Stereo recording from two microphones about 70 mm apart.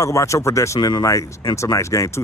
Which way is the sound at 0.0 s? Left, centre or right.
Left.